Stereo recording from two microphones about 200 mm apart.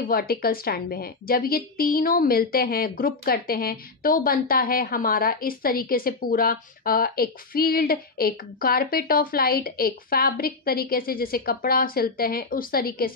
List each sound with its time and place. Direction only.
0.1 s a woman's voice: 50° left (ahead or behind)